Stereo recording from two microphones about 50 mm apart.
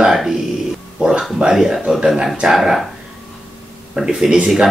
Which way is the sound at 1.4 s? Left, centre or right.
Centre.